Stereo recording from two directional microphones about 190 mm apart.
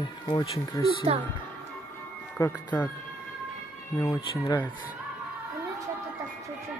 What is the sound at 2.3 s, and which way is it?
Speech, 10° left (ahead or behind).